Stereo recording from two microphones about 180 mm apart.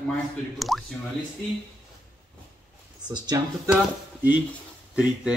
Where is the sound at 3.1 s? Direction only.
25° right (ahead or behind).